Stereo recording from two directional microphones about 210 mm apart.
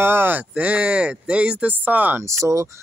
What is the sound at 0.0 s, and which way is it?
Speech, 10° right (ahead or behind).